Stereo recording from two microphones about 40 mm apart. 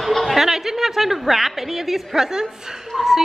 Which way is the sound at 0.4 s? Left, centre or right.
Centre.